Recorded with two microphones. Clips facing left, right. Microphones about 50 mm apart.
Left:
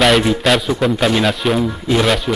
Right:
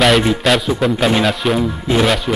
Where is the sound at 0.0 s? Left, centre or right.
Centre.